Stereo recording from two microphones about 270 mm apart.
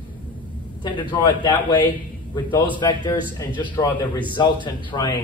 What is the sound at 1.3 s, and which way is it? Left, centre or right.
Speech, centre.